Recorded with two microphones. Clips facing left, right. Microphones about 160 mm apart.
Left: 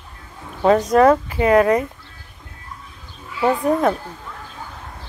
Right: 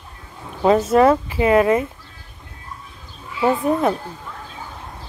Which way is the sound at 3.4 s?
5° right (ahead or behind).